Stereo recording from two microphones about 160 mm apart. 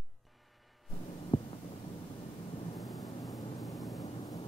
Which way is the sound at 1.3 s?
40° left (ahead or behind).